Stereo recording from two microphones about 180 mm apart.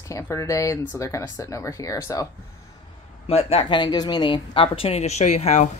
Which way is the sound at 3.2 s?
30° left (ahead or behind).